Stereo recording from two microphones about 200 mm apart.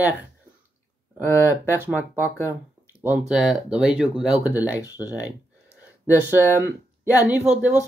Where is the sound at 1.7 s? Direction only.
10° right (ahead or behind).